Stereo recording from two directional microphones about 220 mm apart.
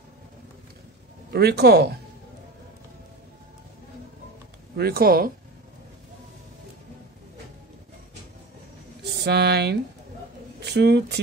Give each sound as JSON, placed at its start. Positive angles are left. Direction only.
{"t": 1.3, "sound": "speech", "side_deg": -45}
{"t": 4.7, "sound": "speech", "side_deg": -45}
{"t": 9.0, "sound": "speech", "side_deg": -50}